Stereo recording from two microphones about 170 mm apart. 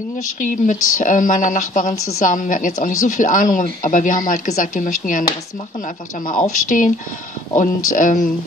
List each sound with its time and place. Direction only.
0.4 s a woman's voice: 50° left (ahead or behind)
6.4 s a woman's voice: 50° left (ahead or behind)